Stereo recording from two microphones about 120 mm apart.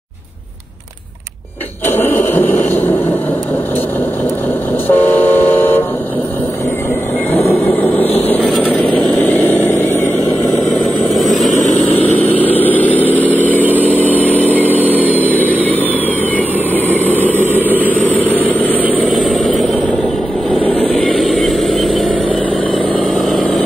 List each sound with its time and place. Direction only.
1.9 s a sound: 20° left (ahead or behind)
4.8 s vehicle: 15° left (ahead or behind)
8.3 s vehicle: 10° left (ahead or behind)
10.8 s vehicle: centre (ahead or behind)
11.6 s vehicle: 90° left
12.2 s vehicle: 15° left (ahead or behind)
13.6 s vehicle: 15° right (ahead or behind)
13.8 s vehicle: 15° left (ahead or behind)
19.0 s vehicle: centre (ahead or behind)
20.6 s vehicle: 10° left (ahead or behind)
20.9 s vehicle: centre (ahead or behind)
23.1 s vehicle: centre (ahead or behind)